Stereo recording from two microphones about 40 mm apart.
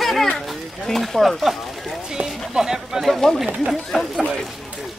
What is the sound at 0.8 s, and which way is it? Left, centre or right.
Speech, centre.